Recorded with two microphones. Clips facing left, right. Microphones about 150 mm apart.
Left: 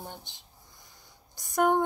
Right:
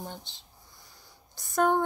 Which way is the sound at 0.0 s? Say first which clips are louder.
Right 2 dB; 15° left (ahead or behind).